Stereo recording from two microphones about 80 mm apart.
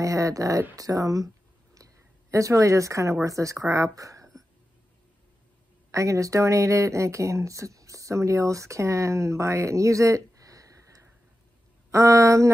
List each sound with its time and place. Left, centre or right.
0.0 s speech: right
5.9 s speech: right